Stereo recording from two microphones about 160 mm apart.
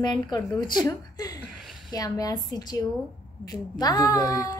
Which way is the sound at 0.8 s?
25° left (ahead or behind).